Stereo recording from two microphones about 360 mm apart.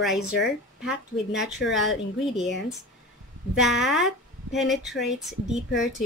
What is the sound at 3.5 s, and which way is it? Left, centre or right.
Speech, centre.